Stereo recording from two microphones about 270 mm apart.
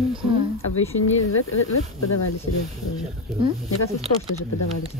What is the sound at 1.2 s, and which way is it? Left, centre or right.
Speech, left.